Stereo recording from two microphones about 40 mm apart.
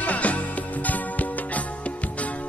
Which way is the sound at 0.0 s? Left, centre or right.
Left.